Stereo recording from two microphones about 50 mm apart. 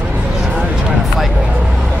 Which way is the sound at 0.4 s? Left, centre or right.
Centre.